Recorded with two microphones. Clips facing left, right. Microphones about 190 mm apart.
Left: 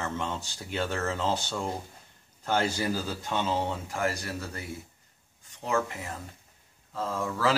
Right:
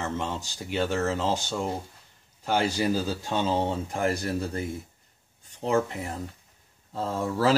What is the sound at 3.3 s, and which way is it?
Speech, 30° right (ahead or behind).